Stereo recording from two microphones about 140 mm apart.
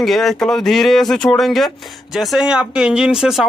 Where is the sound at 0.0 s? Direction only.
Centre (ahead or behind).